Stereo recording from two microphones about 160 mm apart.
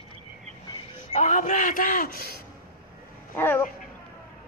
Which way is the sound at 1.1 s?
50° left (ahead or behind).